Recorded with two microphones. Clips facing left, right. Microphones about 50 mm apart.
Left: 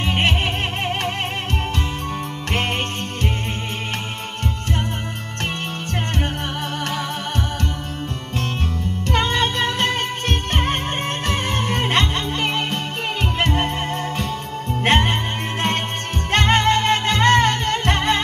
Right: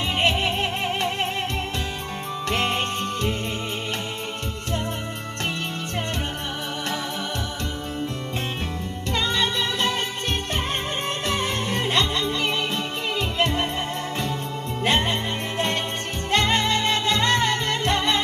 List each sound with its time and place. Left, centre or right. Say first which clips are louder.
0.0 s music: left 2 dB; left
2.5 s music: left 1 dB; left
9.1 s music: left 4 dB; left
14.8 s music: left 4 dB; left
16.3 s music: left 4 dB; left